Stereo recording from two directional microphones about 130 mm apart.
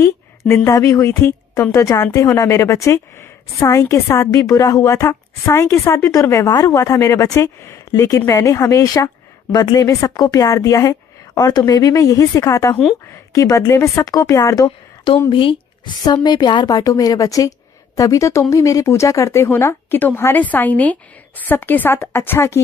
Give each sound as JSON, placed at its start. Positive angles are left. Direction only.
{"t": 0.0, "sound": "a woman's voice", "side_deg": 20}
{"t": 15.2, "sound": "a woman's voice", "side_deg": 40}